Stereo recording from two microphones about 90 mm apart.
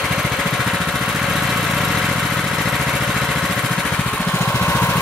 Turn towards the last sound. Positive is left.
turn(degrees=20)  # may be behind; listen again after turning